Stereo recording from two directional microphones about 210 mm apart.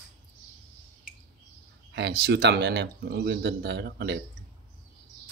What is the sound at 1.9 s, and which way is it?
Speech, 55° right (ahead or behind).